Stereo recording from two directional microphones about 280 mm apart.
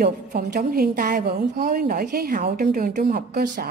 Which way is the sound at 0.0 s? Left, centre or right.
Right.